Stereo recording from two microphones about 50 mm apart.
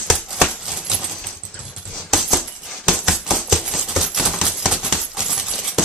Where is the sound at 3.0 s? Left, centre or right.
Centre.